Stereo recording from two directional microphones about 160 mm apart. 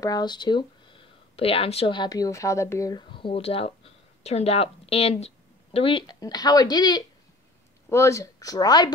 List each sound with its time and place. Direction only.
0.0 s a woman's voice: 25° left (ahead or behind)